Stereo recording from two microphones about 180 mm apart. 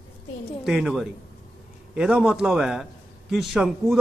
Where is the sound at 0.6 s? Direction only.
Centre (ahead or behind).